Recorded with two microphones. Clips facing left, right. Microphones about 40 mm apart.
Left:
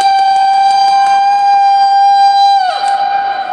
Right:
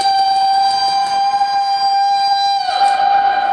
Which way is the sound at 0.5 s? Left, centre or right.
Left.